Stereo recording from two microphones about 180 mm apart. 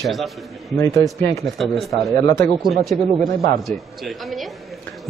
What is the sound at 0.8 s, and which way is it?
Speech, 15° left (ahead or behind).